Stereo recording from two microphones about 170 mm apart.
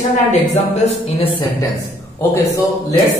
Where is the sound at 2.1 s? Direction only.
15° left (ahead or behind).